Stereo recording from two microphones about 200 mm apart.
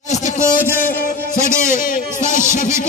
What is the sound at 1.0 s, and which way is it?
Music, 40° left (ahead or behind).